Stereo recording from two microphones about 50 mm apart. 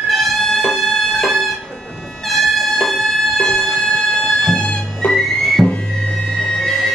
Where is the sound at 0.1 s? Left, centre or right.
Centre.